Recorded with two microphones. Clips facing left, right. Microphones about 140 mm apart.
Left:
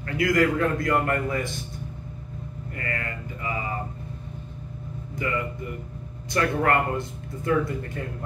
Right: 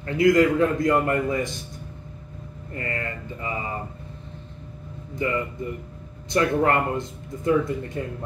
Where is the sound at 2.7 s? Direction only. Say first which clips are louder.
Right 3 dB; 25° right (ahead or behind).